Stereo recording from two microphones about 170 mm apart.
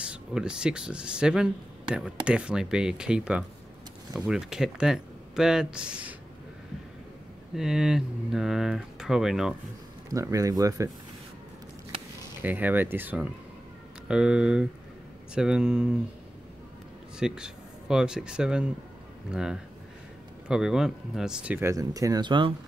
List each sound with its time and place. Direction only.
0.0 s speech: 5° right (ahead or behind)
7.5 s speech: 5° right (ahead or behind)
10.0 s speech: 20° right (ahead or behind)
12.4 s speech: 10° right (ahead or behind)
17.2 s speech: 5° right (ahead or behind); by 22.5 s 25° right (ahead or behind)